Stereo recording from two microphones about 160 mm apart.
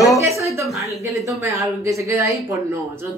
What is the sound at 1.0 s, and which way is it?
Speech, 20° right (ahead or behind).